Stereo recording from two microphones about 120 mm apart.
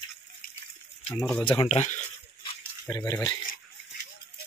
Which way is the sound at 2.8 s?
25° left (ahead or behind).